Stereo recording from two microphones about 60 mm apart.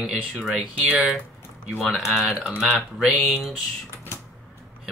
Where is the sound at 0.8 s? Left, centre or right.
Right.